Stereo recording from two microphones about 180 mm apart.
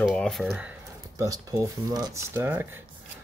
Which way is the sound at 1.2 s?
20° right (ahead or behind).